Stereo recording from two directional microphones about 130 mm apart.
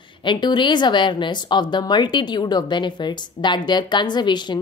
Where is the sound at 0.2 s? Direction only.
35° left (ahead or behind).